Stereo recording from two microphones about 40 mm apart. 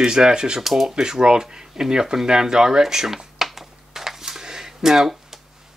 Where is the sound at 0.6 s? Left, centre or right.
Centre.